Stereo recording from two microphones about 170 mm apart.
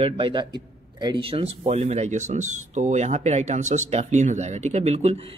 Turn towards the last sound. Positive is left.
turn(degrees=-40)  # may be behind; listen again after turning